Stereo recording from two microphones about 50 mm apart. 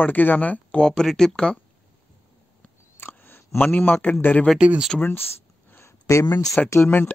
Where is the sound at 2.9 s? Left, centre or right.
Left.